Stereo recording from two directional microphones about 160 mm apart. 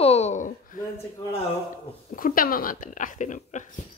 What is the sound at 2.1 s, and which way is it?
Speech, 60° left (ahead or behind).